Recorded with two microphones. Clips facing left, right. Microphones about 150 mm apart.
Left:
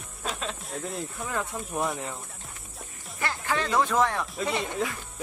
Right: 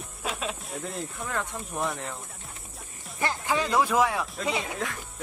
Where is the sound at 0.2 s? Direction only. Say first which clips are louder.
Right 1 dB; 10° right (ahead or behind).